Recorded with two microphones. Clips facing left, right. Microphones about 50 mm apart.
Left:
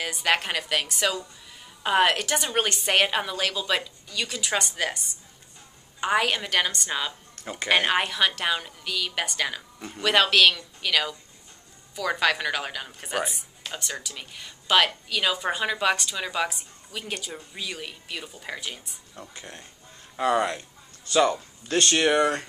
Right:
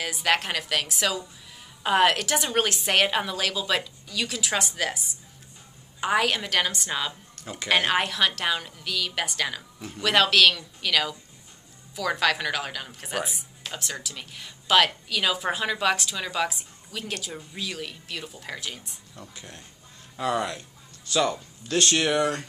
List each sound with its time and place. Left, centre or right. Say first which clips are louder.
0.0 s a woman's voice: even; centre
21.7 s speech: left 2 dB; centre